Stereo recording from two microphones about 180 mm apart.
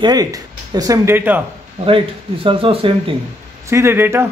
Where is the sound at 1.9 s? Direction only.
30° right (ahead or behind).